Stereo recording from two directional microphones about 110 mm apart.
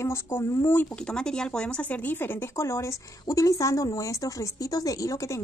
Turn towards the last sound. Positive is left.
turn(degrees=30)  # may be behind; listen again after turning